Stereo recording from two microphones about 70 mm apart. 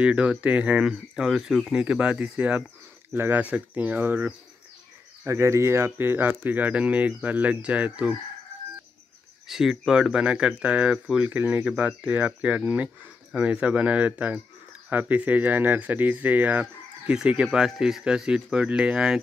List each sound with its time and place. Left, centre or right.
0.0 s speech: centre
5.2 s speech: right; by 8.2 s centre
9.5 s speech: centre; by 17.1 s right
17.1 s speech: centre